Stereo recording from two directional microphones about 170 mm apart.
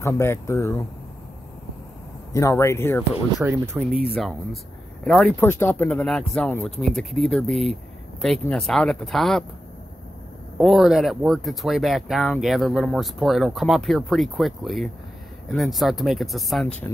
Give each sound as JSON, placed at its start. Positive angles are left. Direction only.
{"t": 0.0, "sound": "speech", "side_deg": 15}
{"t": 2.3, "sound": "speech", "side_deg": 15}
{"t": 3.4, "sound": "speech", "side_deg": -15}
{"t": 3.9, "sound": "speech", "side_deg": 0}
{"t": 5.4, "sound": "speech", "side_deg": 15}
{"t": 10.6, "sound": "speech", "side_deg": 0}